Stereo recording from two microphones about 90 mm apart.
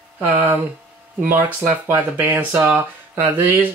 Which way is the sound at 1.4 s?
20° right (ahead or behind).